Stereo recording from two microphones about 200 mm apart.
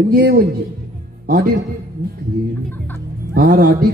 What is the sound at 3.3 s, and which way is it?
Speech, 45° right (ahead or behind).